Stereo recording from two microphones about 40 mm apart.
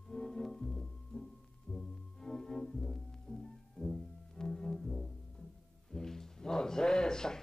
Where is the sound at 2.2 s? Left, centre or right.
Centre.